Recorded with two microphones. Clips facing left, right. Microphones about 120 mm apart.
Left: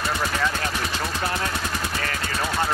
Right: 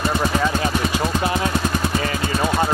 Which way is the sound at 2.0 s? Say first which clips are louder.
Right 6 dB; 15° right (ahead or behind).